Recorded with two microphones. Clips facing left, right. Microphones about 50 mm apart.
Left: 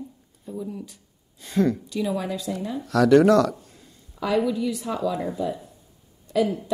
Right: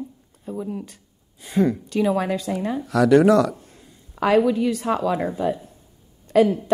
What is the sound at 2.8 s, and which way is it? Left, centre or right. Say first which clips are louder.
Speech: even; centre.